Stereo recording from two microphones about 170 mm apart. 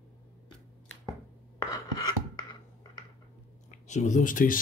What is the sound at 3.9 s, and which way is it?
Speech, 45° left (ahead or behind).